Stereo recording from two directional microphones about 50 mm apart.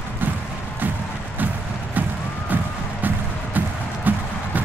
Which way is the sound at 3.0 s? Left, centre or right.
Right.